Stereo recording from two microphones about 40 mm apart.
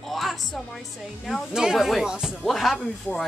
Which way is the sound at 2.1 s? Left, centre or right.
Centre.